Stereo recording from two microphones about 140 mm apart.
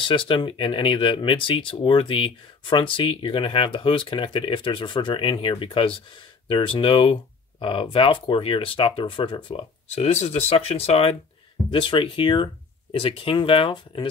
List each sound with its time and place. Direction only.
0.1 s speech: 35° left (ahead or behind)